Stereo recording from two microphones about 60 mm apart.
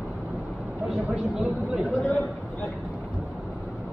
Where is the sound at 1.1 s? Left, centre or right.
Centre.